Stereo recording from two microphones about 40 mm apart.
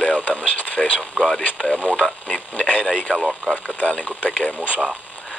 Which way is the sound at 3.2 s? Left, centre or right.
Centre.